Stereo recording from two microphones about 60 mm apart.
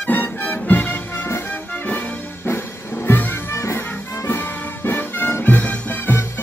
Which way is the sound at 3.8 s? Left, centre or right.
Left.